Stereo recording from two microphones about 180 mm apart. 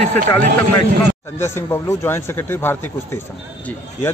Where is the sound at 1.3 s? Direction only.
15° left (ahead or behind).